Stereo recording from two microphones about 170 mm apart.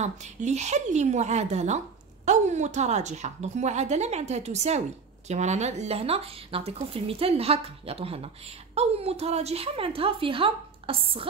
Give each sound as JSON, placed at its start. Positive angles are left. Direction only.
{"t": 0.0, "sound": "a woman's voice", "side_deg": -45}